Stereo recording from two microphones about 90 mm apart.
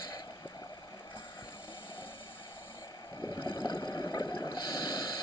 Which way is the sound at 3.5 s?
50° left (ahead or behind).